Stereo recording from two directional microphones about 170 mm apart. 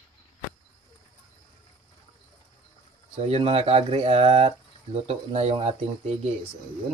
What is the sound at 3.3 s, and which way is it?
Speech, 35° right (ahead or behind).